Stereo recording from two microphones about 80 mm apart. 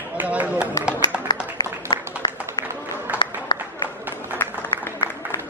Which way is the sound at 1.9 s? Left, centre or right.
Left.